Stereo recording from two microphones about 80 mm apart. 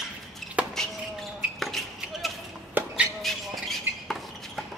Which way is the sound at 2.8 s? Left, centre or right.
Right.